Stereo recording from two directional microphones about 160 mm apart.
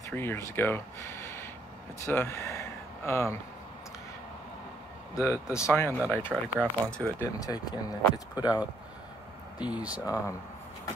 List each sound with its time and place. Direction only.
0.1 s speech: 15° left (ahead or behind)
5.1 s speech: 20° left (ahead or behind)
7.3 s speech: 25° left (ahead or behind)